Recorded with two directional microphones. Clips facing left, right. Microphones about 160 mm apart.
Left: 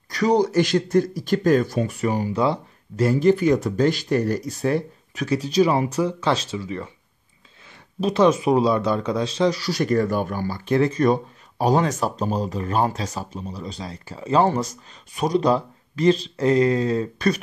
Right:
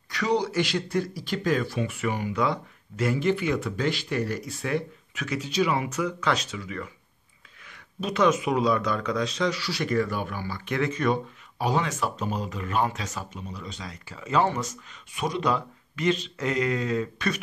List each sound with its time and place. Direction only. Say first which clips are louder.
0.1 s speech: left 7 dB; 40° left (ahead or behind)